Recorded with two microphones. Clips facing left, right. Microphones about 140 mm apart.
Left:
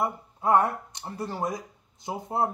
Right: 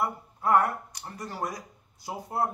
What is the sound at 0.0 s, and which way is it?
Speech, 20° left (ahead or behind).